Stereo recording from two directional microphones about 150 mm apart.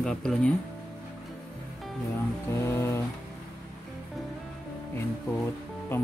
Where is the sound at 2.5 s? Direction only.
20° left (ahead or behind).